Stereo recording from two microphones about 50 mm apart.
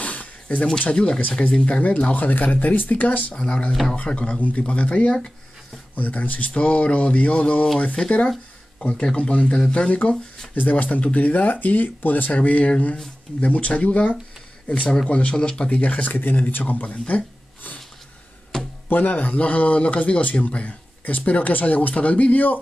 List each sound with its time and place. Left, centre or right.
0.0 s a sound: left
0.7 s speech: left
1.7 s speech: left
2.1 s speech: left
3.3 s speech: centre
5.9 s speech: left
6.5 s speech: left
8.7 s speech: centre
15.8 s speech: left
18.5 s music: centre
18.9 s speech: left